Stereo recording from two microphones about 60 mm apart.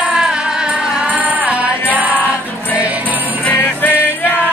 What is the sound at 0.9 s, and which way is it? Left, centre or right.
Music, right.